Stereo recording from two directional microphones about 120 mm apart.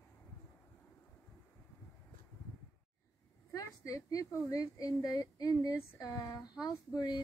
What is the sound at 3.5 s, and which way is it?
A woman's voice, 30° left (ahead or behind).